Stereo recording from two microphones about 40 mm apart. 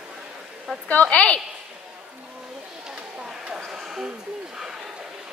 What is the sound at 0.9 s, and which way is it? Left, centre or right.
Speech, left.